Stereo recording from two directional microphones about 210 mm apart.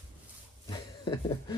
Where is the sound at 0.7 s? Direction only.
20° left (ahead or behind).